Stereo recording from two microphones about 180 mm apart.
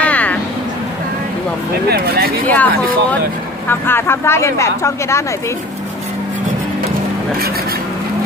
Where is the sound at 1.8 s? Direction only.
60° right (ahead or behind).